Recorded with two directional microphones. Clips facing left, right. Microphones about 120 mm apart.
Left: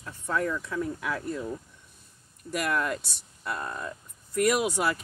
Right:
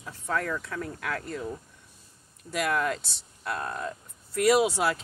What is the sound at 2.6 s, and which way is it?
Speech, centre (ahead or behind).